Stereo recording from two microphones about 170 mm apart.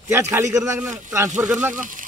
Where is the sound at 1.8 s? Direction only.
50° right (ahead or behind).